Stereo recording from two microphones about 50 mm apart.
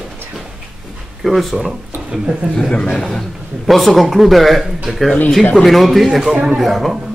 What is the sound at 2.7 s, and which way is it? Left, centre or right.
Speech, left.